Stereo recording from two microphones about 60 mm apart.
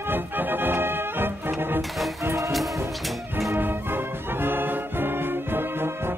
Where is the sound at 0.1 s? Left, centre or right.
Right.